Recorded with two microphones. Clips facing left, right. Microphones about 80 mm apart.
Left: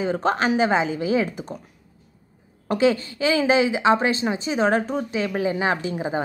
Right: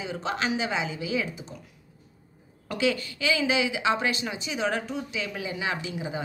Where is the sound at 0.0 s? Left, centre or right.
Left.